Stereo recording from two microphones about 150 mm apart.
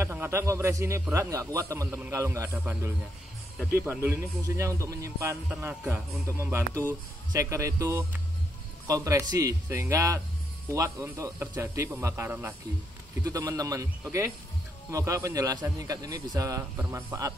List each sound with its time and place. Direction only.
0.0 s a man's voice: 15° right (ahead or behind)
4.0 s a man's voice: 15° right (ahead or behind)
13.2 s a man's voice: 25° right (ahead or behind)